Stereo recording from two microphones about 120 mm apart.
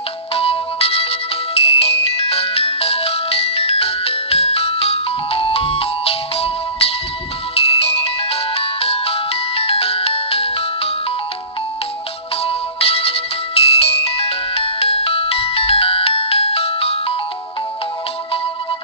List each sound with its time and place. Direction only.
0.3 s ringtone: 55° left (ahead or behind)
12.4 s ringtone: 55° left (ahead or behind)